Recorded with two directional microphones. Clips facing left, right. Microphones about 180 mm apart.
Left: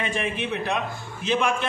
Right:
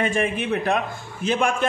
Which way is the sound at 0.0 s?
50° right (ahead or behind).